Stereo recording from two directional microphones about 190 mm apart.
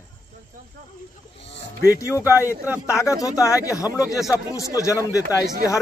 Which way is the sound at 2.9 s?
15° left (ahead or behind).